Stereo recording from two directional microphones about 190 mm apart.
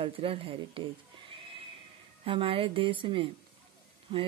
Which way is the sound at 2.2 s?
30° right (ahead or behind).